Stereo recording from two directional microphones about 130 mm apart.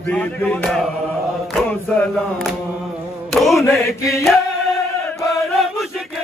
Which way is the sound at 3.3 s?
Centre (ahead or behind).